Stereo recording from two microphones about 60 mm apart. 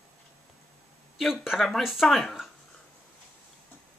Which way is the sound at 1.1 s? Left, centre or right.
Centre.